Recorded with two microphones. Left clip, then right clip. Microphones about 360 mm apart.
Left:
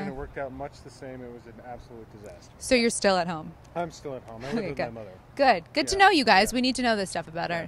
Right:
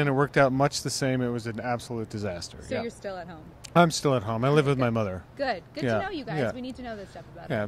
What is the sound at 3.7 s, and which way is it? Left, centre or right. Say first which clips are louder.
Speech: right 11 dB; right.